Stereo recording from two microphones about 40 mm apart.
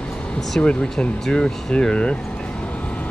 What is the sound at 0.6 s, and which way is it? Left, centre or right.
Speech, left.